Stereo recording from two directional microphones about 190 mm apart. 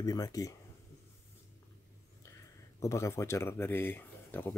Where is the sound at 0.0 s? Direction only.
20° left (ahead or behind).